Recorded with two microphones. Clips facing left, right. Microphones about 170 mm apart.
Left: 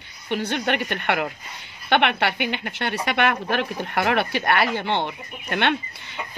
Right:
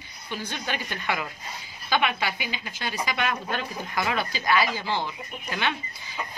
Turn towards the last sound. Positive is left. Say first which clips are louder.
# left 6 dB
turn(degrees=65)  # may be behind; listen again after turning